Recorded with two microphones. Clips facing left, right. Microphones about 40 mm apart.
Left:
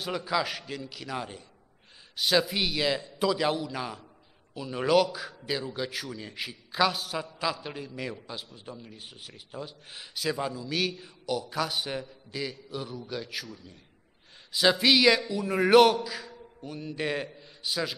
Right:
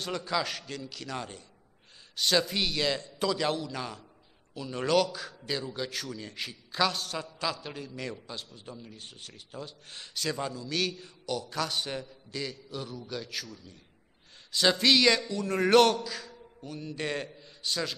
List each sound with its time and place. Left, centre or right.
0.0 s a man's voice: centre